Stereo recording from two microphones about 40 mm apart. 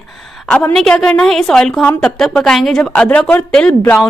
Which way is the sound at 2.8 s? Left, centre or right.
Left.